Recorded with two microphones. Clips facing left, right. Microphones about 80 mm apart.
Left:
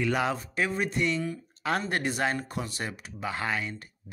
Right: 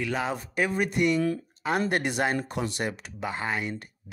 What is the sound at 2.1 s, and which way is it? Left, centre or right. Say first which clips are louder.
Speech: right 2 dB; right.